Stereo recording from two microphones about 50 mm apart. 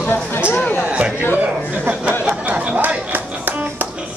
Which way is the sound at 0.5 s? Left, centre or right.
Left.